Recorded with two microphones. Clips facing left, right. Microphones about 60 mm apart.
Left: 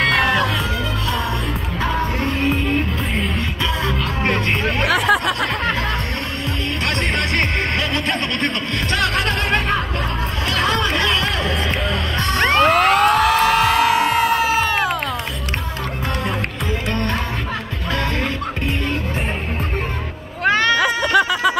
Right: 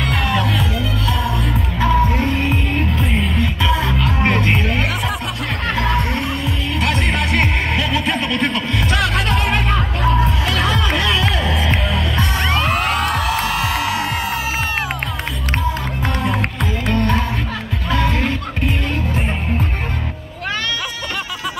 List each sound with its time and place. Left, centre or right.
0.0 s music: left
3.3 s music: centre
4.8 s music: left
6.9 s music: centre
12.4 s music: left
16.9 s music: centre
20.4 s baby cry: left
20.7 s a sound: left